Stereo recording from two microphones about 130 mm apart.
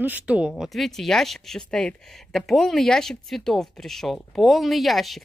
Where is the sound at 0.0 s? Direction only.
10° right (ahead or behind).